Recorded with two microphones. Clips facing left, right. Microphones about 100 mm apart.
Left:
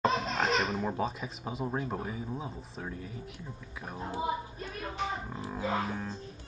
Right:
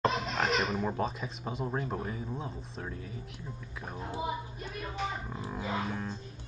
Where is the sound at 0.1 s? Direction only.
30° left (ahead or behind).